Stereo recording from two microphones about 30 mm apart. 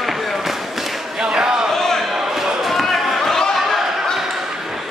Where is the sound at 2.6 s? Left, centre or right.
Centre.